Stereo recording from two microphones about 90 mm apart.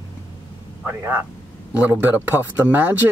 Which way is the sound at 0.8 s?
25° right (ahead or behind).